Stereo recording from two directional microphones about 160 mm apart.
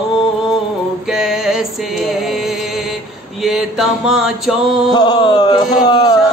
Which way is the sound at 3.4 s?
5° right (ahead or behind).